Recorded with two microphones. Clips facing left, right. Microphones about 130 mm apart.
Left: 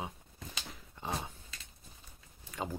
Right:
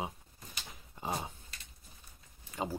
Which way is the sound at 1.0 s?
5° right (ahead or behind).